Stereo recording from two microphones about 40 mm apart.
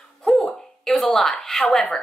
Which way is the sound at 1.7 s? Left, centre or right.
Centre.